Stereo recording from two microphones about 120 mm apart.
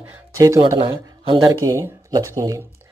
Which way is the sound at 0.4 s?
30° right (ahead or behind).